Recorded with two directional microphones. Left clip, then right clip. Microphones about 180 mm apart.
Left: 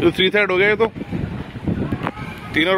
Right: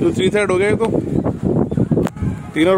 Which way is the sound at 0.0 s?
5° right (ahead or behind).